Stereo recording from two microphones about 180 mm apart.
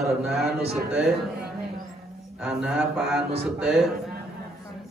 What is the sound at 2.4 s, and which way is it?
A man's voice, 5° right (ahead or behind).